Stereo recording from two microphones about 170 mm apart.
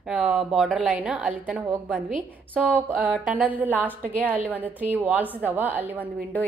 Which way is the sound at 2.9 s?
5° right (ahead or behind).